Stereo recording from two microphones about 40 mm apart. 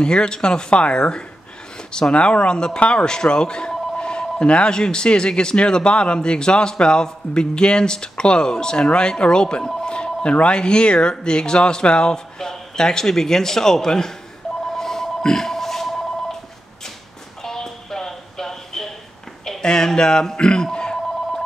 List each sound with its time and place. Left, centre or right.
0.0 s speech: left
14.7 s telephone: centre
17.4 s a sound: centre
19.6 s speech: centre